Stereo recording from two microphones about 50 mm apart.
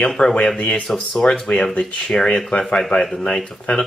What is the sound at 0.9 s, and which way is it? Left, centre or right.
Speech, centre.